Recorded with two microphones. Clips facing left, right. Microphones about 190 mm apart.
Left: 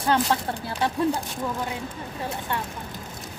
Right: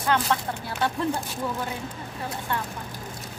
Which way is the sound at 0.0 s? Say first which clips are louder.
Left 2 dB; 30° left (ahead or behind).